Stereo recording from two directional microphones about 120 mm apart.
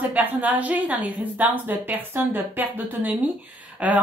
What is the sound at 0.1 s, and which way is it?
A woman's voice, 15° right (ahead or behind).